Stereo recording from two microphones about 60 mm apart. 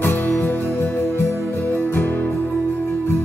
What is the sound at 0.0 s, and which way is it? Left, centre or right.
Music, left.